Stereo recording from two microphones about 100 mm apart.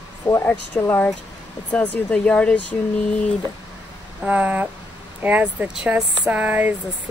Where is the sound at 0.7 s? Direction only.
20° left (ahead or behind).